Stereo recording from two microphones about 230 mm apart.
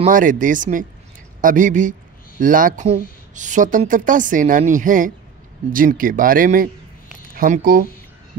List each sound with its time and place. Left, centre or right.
0.0 s speech: right